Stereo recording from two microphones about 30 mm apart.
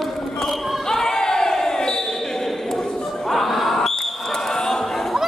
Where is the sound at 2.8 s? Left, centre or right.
Centre.